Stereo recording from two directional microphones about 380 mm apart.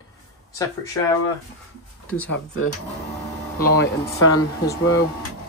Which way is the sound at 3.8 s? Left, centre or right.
Left.